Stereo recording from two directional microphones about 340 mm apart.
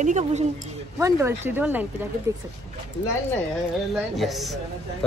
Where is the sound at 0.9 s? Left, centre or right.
Centre.